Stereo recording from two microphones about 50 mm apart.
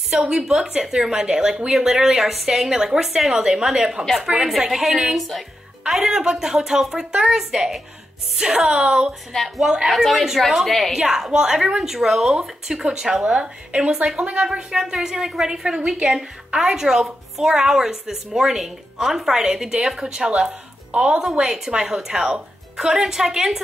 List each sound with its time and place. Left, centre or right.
0.3 s a woman's voice: centre
5.9 s speech: centre
9.3 s a woman's voice: centre
9.8 s a woman's voice: centre